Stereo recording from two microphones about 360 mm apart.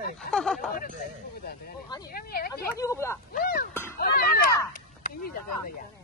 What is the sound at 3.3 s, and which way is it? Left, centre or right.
Speech, left.